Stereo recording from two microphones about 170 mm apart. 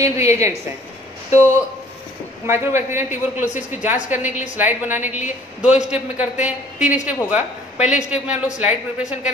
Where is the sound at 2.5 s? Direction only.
15° right (ahead or behind).